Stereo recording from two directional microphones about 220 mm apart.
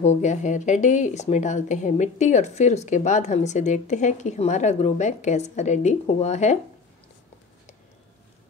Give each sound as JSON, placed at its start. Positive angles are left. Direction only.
{"t": 0.0, "sound": "speech", "side_deg": 30}